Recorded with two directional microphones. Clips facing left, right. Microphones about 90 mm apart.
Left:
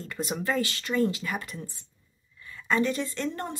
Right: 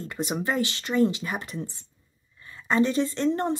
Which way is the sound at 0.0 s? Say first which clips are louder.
Right 2 dB; 20° right (ahead or behind).